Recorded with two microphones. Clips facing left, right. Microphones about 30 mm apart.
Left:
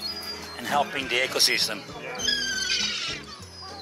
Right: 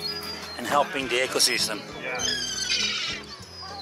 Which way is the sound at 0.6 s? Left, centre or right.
Centre.